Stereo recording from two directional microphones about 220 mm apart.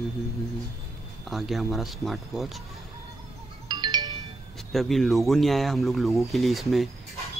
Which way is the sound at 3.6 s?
20° right (ahead or behind).